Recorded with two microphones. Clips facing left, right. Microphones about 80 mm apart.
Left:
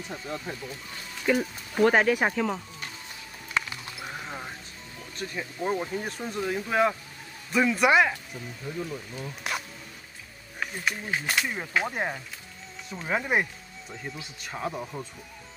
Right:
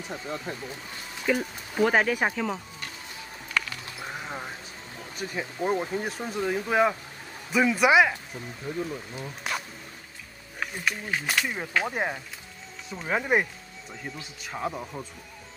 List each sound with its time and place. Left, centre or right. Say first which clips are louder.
0.1 s speech: right 1 dB; centre
1.2 s speech: left 1 dB; centre
3.6 s sheep: even; left
4.1 s a sound: right 2 dB; centre
5.1 s speech: right 2 dB; centre
6.0 s speech: right 2 dB; centre
8.8 s speech: right 1 dB; centre
10.6 s speech: even; centre